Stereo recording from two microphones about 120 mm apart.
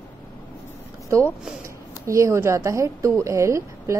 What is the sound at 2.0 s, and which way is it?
A woman's voice, 25° right (ahead or behind).